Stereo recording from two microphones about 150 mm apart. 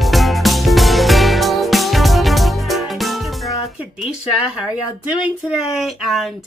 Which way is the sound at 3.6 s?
5° right (ahead or behind).